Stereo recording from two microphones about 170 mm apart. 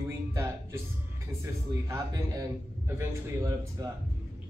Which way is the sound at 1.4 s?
20° right (ahead or behind).